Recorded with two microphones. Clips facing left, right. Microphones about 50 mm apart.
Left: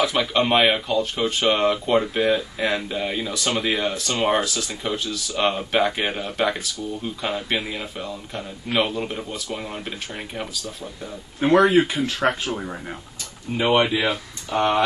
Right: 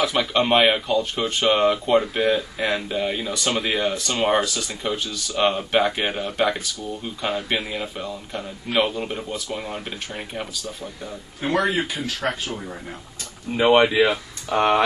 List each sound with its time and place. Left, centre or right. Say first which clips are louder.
0.0 s speech: even; centre
12.2 s speech: left 4 dB; left
13.9 s speech: right 4 dB; right